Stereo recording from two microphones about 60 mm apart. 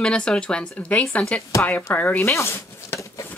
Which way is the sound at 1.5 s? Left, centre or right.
Left.